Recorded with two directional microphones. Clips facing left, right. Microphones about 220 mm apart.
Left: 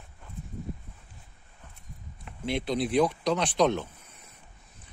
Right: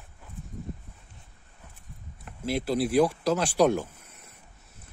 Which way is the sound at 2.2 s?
5° right (ahead or behind).